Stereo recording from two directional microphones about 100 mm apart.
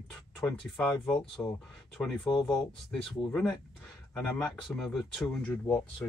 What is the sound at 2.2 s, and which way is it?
Speech, centre (ahead or behind).